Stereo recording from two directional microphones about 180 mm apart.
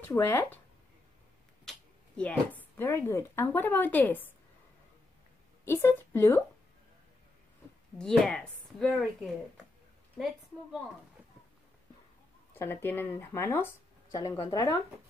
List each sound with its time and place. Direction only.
0.1 s speech: 15° left (ahead or behind)
1.7 s speech: 5° left (ahead or behind)
5.7 s speech: 15° left (ahead or behind)
8.0 s a woman's voice: 5° left (ahead or behind)
12.5 s speech: 10° left (ahead or behind)